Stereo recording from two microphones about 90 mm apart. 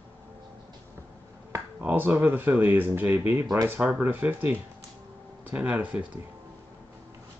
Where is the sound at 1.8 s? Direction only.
20° right (ahead or behind).